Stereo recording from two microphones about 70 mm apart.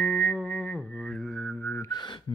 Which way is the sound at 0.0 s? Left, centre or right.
Left.